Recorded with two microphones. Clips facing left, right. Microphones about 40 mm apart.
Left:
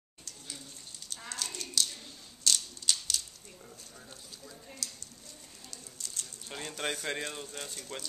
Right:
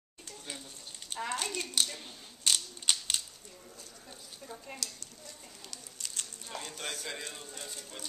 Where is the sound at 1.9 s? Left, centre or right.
Right.